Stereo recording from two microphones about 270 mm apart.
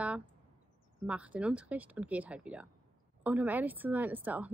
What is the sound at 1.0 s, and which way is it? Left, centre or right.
A woman's voice, centre.